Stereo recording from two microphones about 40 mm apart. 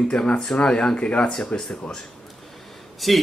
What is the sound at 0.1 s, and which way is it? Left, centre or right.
Speech, left.